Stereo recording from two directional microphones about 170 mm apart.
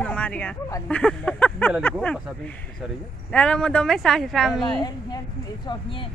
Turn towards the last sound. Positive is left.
turn(degrees=30)  # may be behind; listen again after turning